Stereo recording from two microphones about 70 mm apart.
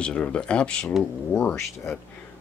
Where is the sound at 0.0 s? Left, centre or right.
Centre.